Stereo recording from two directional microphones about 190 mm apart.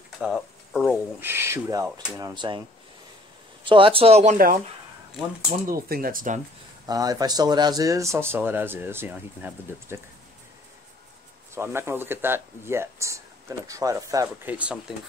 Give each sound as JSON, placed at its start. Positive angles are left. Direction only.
{"t": 0.2, "sound": "speech", "side_deg": 0}
{"t": 1.2, "sound": "speech", "side_deg": -15}
{"t": 3.6, "sound": "speech", "side_deg": -25}
{"t": 5.7, "sound": "speech", "side_deg": -50}
{"t": 6.9, "sound": "speech", "side_deg": -20}
{"t": 11.5, "sound": "speech", "side_deg": -10}